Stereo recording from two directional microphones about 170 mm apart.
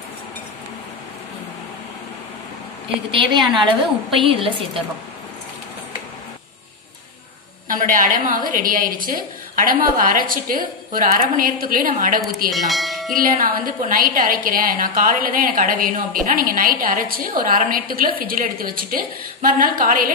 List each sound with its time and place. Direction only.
3.1 s a woman's voice: 30° right (ahead or behind)
7.6 s a woman's voice: 50° right (ahead or behind)
12.4 s bell: centre (ahead or behind)
13.1 s a woman's voice: 55° right (ahead or behind)